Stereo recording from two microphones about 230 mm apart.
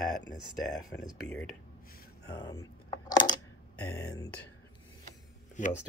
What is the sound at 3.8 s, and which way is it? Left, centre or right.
Speech, centre.